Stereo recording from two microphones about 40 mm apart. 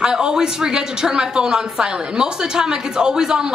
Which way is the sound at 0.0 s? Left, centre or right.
Centre.